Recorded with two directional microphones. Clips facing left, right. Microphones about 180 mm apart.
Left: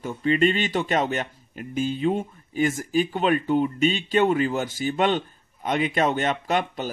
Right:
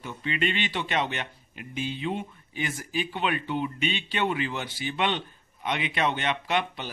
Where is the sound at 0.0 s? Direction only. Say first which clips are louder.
Left 9 dB; 40° left (ahead or behind).